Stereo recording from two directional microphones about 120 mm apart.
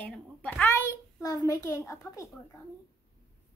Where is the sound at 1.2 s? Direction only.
30° left (ahead or behind).